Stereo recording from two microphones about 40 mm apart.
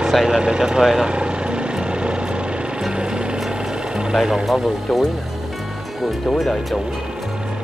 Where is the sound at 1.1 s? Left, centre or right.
Right.